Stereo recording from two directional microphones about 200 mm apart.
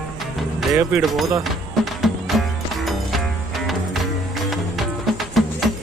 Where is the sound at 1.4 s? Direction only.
Centre (ahead or behind).